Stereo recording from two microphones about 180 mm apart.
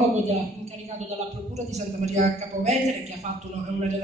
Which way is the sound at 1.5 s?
40° right (ahead or behind).